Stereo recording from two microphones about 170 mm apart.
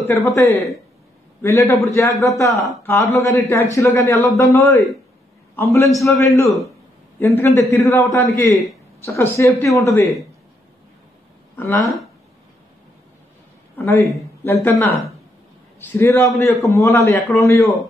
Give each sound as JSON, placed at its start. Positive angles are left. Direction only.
{"t": 0.0, "sound": "speech", "side_deg": 5}
{"t": 1.4, "sound": "a man's voice", "side_deg": 15}
{"t": 11.5, "sound": "speech", "side_deg": 15}
{"t": 13.7, "sound": "speech", "side_deg": 15}
{"t": 16.0, "sound": "a man's voice", "side_deg": 15}